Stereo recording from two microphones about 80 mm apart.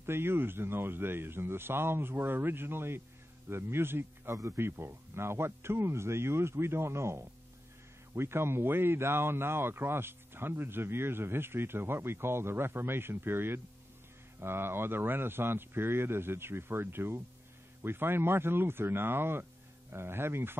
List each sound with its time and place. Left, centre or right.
0.0 s a man's voice: right